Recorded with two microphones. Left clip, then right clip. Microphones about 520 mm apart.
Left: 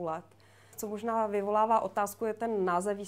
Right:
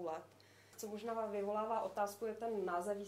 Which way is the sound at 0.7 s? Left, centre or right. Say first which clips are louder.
Left 11 dB; left.